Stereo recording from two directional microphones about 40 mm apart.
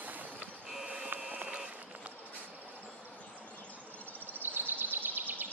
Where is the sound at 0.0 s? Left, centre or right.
Right.